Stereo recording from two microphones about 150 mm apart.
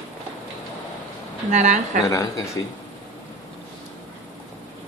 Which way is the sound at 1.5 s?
55° right (ahead or behind).